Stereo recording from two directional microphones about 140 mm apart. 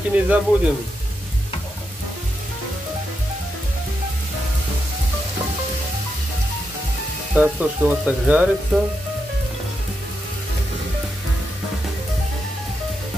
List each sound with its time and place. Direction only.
0.1 s speech: 10° right (ahead or behind)
7.3 s speech: 10° right (ahead or behind)